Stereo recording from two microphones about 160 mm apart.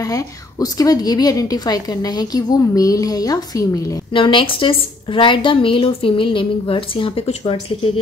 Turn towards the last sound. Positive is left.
turn(degrees=40)  # may be behind; listen again after turning